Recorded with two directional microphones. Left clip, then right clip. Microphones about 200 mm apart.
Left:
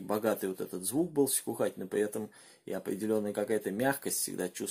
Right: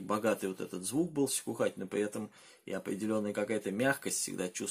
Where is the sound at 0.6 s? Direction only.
40° right (ahead or behind).